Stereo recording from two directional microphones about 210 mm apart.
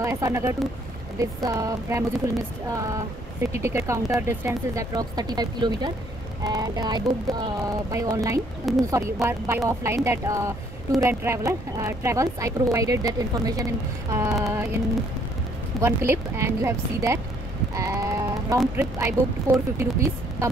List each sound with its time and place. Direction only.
0.0 s speech: 15° right (ahead or behind)
15.8 s speech: 10° right (ahead or behind)
17.7 s sheep: 15° right (ahead or behind)
18.8 s speech: 10° right (ahead or behind)